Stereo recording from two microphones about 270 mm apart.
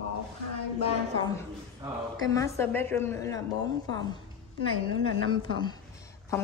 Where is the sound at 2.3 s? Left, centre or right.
Centre.